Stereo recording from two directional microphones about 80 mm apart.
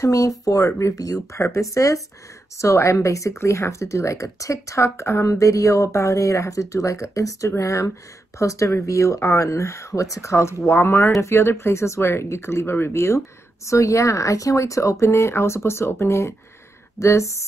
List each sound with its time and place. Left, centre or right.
0.0 s speech: left